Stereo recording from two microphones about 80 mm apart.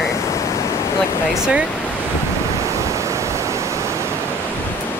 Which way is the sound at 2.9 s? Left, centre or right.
Right.